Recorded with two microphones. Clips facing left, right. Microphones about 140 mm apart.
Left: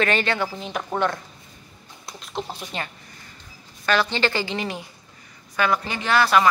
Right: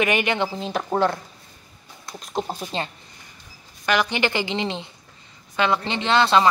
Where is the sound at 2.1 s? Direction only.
45° right (ahead or behind).